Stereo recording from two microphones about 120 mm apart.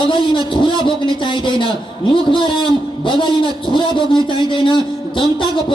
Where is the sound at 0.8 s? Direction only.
40° left (ahead or behind).